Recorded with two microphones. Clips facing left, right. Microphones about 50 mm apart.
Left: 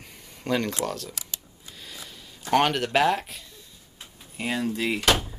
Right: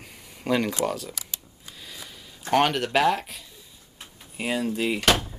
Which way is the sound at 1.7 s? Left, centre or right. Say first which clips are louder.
Even; centre.